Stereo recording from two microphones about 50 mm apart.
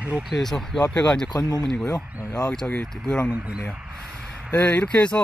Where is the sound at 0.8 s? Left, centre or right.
Centre.